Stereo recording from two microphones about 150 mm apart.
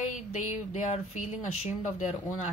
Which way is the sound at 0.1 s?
55° left (ahead or behind).